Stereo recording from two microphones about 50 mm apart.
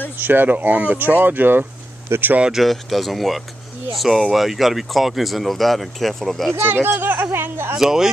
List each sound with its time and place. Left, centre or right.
0.2 s speech: right
2.5 s speech: centre
6.7 s speech: right
7.3 s a sound: right
7.7 s speech: centre